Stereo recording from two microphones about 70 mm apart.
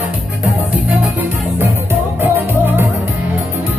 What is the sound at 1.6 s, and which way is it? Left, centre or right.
Music, right.